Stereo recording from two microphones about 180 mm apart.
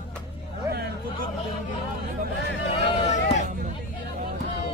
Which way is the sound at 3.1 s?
40° left (ahead or behind).